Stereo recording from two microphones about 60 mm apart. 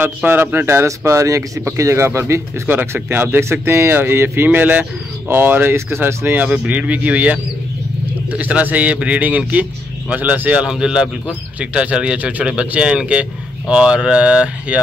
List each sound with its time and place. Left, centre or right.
0.0 s speech: right
2.7 s speech: right
6.4 s a man's voice: right
10.7 s speech: centre